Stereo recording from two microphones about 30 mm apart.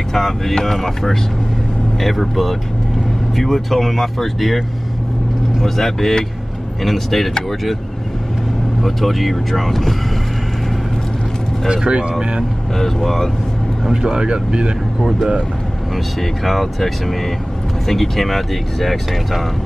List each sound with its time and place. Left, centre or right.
0.1 s speech: centre
8.8 s speech: centre
11.9 s speech: right
12.7 s speech: centre
14.0 s speech: right
16.2 s speech: centre